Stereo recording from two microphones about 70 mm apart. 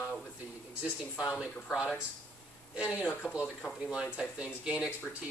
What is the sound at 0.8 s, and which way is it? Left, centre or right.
Speech, centre.